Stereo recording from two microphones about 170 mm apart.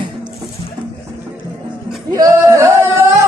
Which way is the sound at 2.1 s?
20° right (ahead or behind).